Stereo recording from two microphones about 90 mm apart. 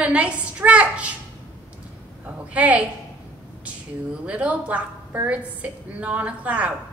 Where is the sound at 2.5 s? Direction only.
15° right (ahead or behind).